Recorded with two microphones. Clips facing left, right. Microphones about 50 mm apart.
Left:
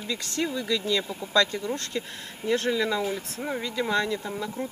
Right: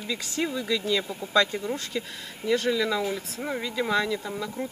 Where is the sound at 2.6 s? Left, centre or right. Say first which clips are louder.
Even; centre.